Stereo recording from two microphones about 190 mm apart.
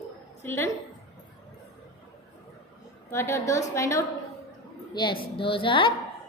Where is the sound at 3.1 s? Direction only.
15° left (ahead or behind).